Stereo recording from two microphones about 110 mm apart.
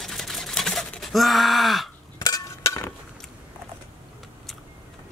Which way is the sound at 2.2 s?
35° left (ahead or behind).